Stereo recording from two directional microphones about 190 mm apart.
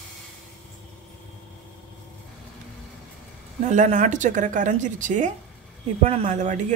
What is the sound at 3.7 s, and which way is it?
A woman's voice, 40° right (ahead or behind).